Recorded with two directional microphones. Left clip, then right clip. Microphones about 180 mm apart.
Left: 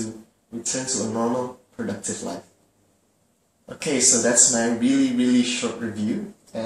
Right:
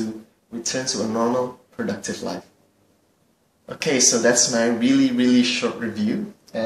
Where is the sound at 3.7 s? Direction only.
15° right (ahead or behind).